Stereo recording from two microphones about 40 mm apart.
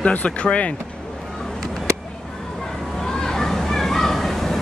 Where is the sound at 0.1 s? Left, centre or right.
Left.